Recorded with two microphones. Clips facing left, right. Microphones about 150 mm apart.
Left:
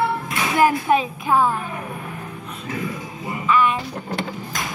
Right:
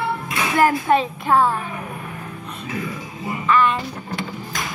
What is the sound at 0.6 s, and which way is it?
Music, 15° left (ahead or behind).